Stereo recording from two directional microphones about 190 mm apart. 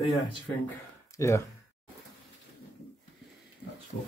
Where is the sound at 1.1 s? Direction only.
15° left (ahead or behind).